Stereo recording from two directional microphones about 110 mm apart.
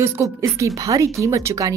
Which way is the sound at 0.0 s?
30° right (ahead or behind).